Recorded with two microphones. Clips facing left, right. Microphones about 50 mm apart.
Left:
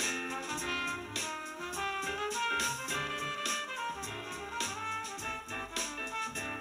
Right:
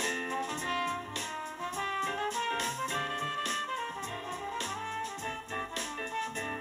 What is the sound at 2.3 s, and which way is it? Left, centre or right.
Music, left.